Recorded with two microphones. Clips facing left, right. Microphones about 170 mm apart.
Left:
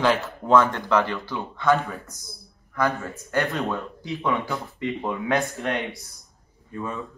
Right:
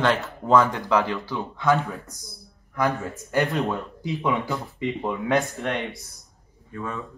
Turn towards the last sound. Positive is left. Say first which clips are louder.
# left 1 dB
turn(degrees=20)  # may be behind; listen again after turning